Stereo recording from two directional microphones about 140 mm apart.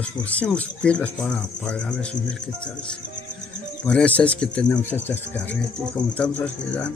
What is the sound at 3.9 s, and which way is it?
Speech, 10° left (ahead or behind).